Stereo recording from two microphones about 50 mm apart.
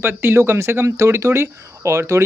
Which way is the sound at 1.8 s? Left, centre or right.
Right.